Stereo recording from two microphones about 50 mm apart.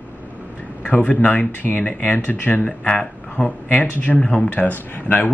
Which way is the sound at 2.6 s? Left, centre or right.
Left.